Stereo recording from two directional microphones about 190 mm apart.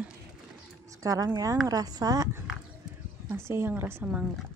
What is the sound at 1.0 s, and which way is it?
Speech, 20° right (ahead or behind).